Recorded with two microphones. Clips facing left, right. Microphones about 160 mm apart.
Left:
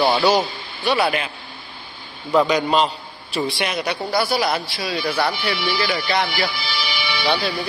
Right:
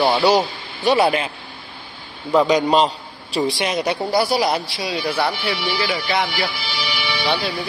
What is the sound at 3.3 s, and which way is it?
Speech, 40° right (ahead or behind).